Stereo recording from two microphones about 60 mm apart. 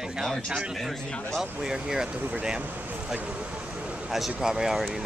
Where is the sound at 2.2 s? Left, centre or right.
Right.